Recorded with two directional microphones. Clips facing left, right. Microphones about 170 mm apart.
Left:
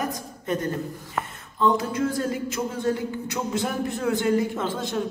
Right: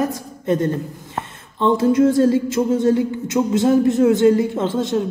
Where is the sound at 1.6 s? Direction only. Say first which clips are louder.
Right 8 dB; 25° right (ahead or behind).